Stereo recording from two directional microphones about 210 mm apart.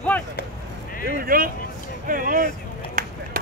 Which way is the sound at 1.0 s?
45° right (ahead or behind).